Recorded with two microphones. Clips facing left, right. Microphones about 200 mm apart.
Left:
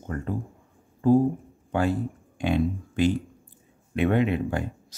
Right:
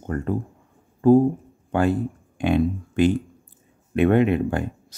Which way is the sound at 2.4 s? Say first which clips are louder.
Right 4 dB; 55° right (ahead or behind).